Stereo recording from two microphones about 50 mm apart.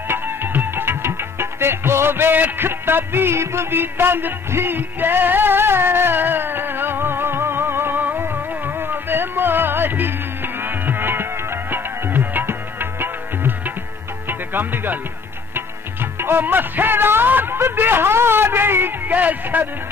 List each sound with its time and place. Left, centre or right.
0.1 s music: right
14.5 s speech: right
15.5 s music: right
19.1 s speech: right